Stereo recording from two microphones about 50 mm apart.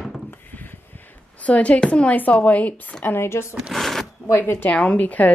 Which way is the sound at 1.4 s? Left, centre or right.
Left.